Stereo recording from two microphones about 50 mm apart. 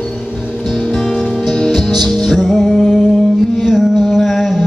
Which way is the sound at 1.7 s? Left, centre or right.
Centre.